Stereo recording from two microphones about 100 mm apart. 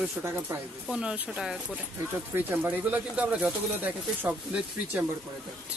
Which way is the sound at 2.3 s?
20° right (ahead or behind).